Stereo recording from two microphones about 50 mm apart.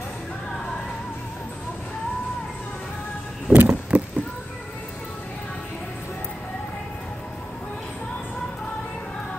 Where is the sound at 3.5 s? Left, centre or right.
Right.